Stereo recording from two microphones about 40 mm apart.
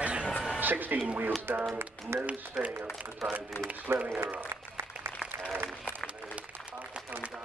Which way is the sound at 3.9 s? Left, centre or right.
Right.